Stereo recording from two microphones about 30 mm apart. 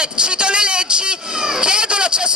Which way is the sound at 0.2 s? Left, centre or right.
Right.